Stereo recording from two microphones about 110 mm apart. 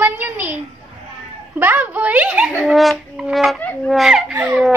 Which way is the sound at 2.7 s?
Centre (ahead or behind).